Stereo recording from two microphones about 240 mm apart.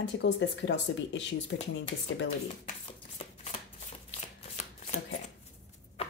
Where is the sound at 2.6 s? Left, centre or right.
Left.